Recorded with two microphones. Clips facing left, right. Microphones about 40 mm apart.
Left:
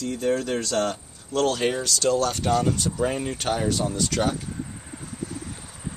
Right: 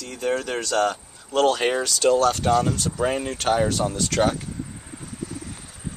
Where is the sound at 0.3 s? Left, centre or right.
Right.